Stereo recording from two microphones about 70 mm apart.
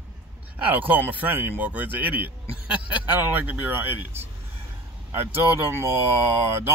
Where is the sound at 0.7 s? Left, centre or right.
Right.